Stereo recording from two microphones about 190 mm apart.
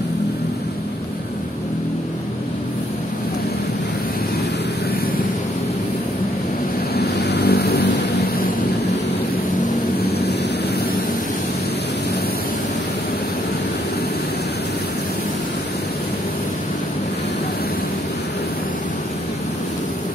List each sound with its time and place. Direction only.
7.0 s vehicle: 60° left (ahead or behind)